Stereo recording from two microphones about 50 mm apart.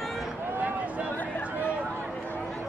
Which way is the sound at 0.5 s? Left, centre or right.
Right.